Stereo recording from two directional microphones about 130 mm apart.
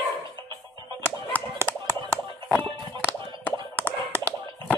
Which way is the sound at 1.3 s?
15° left (ahead or behind).